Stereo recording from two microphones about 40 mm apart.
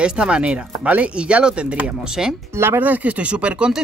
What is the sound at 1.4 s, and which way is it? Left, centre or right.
Speech, right.